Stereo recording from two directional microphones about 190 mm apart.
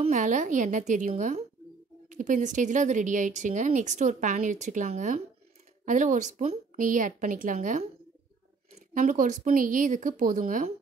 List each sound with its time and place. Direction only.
0.0 s speech: 40° right (ahead or behind)